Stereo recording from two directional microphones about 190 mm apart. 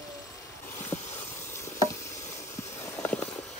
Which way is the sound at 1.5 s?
15° left (ahead or behind).